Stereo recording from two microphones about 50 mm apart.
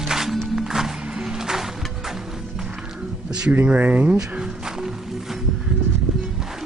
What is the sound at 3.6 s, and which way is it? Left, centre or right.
Speech, right.